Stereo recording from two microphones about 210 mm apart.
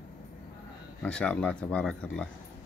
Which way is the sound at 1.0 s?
5° left (ahead or behind).